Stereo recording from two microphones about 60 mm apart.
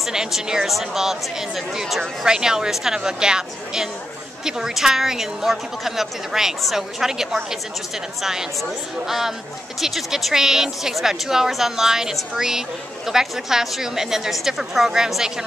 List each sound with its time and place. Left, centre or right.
0.0 s a woman's voice: centre